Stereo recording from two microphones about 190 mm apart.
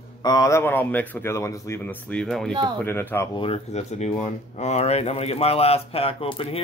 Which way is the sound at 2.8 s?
10° left (ahead or behind).